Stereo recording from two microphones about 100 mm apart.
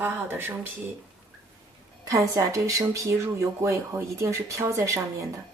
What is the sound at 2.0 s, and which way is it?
A woman's voice, 35° right (ahead or behind).